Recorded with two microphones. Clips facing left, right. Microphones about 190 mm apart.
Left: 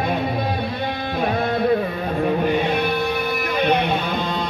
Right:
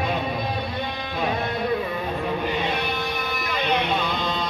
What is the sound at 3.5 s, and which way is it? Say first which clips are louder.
Guitar: left 5 dB; 55° left (ahead or behind).